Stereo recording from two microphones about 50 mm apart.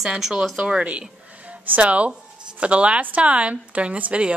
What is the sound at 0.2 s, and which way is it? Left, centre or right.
Speech, centre.